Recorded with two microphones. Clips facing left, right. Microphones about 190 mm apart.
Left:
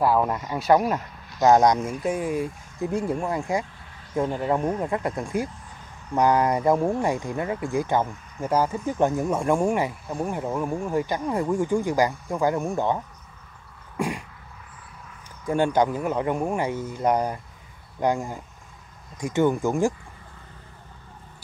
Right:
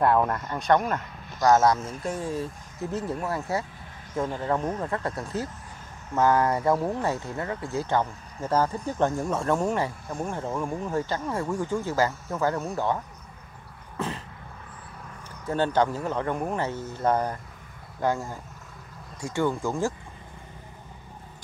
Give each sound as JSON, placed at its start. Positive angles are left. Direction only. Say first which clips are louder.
{"t": 0.0, "sound": "speech", "louder": "left 1 dB", "side_deg": 5}
{"t": 1.4, "sound": "speech", "louder": "left 3 dB", "side_deg": 15}
{"t": 13.9, "sound": "throat clearing", "louder": "left 4 dB", "side_deg": 10}
{"t": 15.4, "sound": "speech", "louder": "left 3 dB", "side_deg": 10}